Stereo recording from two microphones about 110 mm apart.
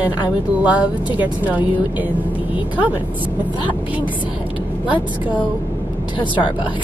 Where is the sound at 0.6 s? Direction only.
10° right (ahead or behind).